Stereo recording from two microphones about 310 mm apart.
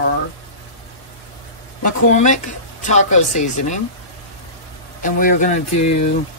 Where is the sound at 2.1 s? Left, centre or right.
Left.